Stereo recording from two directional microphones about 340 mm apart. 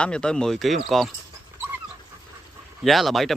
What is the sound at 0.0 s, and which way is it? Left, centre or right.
Speech, centre.